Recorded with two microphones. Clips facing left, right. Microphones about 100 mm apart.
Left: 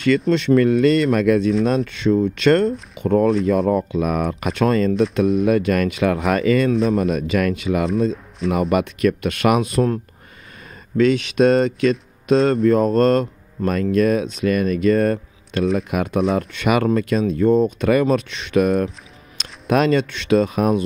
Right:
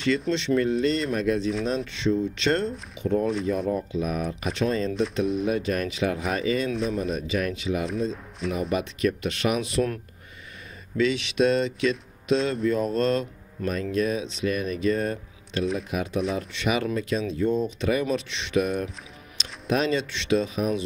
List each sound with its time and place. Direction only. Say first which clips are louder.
0.3 s speech: left 10 dB; 55° left (ahead or behind); by 1.5 s 70° left (ahead or behind)
1.9 s speech: left 7 dB; 55° left (ahead or behind)
3.4 s speech: left 8 dB; 90° left; by 7.8 s 65° left (ahead or behind)
8.5 s speech: left 8 dB; 85° left; by 9.8 s 50° left (ahead or behind)
11.0 s speech: left 7 dB; 45° left (ahead or behind)